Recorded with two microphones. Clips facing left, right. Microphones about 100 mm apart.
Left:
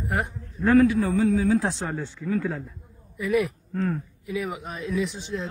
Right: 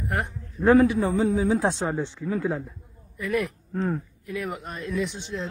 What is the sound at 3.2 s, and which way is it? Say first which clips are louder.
Speech: left 3 dB; 5° left (ahead or behind).